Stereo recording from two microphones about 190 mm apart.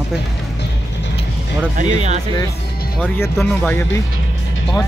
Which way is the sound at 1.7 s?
35° right (ahead or behind).